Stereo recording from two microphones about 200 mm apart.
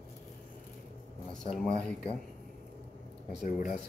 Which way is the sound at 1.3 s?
5° left (ahead or behind).